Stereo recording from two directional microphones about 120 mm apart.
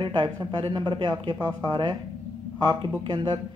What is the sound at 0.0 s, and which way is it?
Speech, 40° right (ahead or behind).